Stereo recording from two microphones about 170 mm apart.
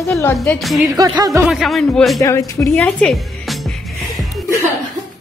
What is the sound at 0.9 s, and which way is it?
Speech, 20° right (ahead or behind).